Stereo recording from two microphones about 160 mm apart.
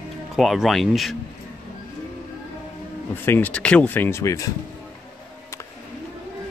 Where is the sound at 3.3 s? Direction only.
10° left (ahead or behind).